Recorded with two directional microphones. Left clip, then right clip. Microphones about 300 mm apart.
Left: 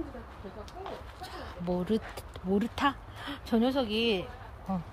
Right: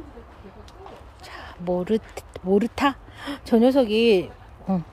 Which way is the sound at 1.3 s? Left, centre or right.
Centre.